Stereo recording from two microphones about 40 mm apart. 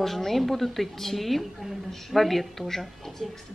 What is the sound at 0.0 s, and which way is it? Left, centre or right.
A woman's voice, centre.